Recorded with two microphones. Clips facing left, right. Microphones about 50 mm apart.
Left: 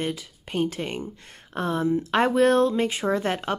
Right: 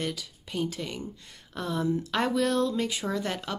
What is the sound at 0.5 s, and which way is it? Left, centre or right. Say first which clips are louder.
Speech: left 5 dB; left.